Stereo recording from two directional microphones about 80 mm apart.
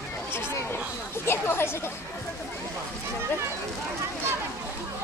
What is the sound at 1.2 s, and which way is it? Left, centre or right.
Speech, left.